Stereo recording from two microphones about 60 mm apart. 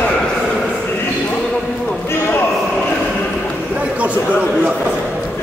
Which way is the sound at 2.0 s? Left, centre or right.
Left.